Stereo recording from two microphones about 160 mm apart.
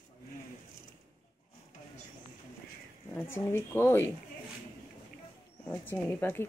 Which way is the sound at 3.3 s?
15° left (ahead or behind).